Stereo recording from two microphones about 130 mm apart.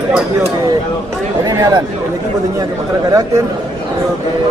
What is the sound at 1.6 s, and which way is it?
Speech, 35° right (ahead or behind).